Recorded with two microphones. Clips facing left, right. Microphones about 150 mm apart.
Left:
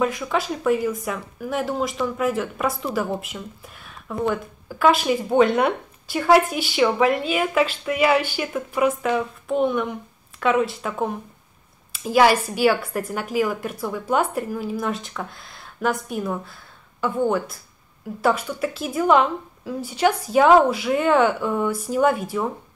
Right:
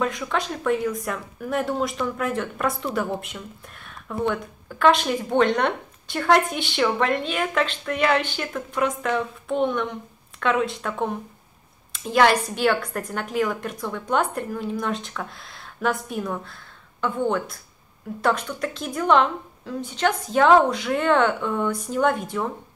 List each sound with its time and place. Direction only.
0.0 s speech: 5° left (ahead or behind)